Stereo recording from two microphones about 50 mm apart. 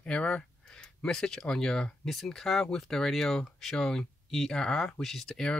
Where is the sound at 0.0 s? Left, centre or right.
Left.